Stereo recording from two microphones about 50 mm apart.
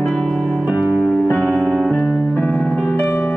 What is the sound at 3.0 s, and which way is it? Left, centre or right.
Music, left.